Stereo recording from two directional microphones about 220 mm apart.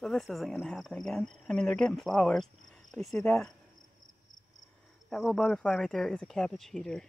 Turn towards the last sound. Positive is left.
turn(degrees=0)  # may be behind; listen again after turning